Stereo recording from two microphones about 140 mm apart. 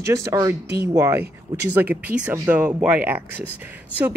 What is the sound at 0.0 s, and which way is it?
Speech, 25° right (ahead or behind).